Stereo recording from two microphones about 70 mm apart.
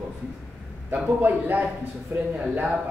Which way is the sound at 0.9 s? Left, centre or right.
Right.